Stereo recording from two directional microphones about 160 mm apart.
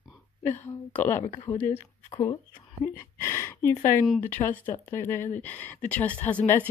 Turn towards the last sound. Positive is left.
turn(degrees=10)  # may be behind; listen again after turning